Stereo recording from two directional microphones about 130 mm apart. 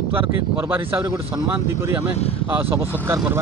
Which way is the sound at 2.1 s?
50° left (ahead or behind).